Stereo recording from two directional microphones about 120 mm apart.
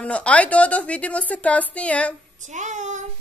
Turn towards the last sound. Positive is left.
turn(degrees=-80)